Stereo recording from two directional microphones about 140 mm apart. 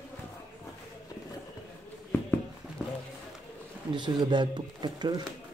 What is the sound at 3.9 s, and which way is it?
Speech, 30° right (ahead or behind).